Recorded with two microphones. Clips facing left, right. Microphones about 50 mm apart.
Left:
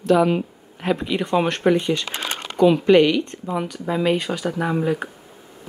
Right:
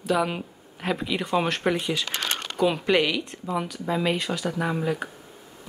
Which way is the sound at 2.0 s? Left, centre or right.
Left.